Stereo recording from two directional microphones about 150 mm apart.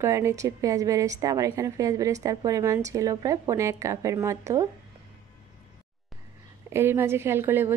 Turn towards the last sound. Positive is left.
turn(degrees=-15)  # may be behind; listen again after turning